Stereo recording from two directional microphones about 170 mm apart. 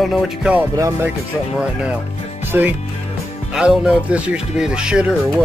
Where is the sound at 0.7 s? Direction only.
20° right (ahead or behind).